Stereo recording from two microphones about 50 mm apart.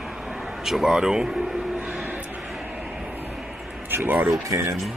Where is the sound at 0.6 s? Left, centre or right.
Centre.